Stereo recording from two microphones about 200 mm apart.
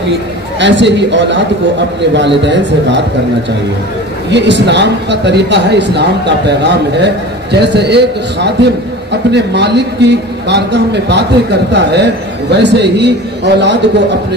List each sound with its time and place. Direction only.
0.6 s a man's voice: 60° right (ahead or behind)
4.3 s a man's voice: 60° right (ahead or behind)